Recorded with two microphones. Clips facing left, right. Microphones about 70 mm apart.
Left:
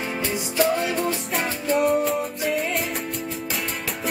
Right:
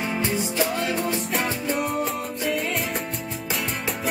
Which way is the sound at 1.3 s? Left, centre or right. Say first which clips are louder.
Left 2 dB; centre.